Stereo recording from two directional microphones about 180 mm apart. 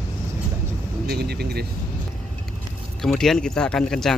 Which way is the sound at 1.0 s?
60° right (ahead or behind).